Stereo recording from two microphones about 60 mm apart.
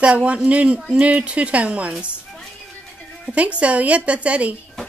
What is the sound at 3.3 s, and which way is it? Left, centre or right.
Speech, right.